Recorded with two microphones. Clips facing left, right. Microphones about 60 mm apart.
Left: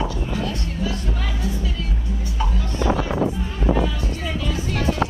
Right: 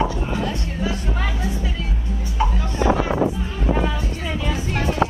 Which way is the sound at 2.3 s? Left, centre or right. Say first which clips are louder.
Right 4 dB; right.